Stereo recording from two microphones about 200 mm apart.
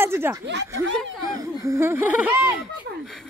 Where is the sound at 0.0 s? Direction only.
10° right (ahead or behind).